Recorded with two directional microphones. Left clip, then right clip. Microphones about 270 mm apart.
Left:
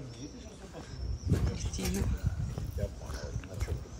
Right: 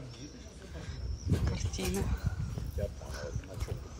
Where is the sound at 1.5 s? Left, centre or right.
Centre.